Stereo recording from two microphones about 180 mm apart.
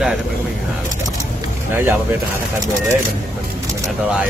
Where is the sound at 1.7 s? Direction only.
15° right (ahead or behind).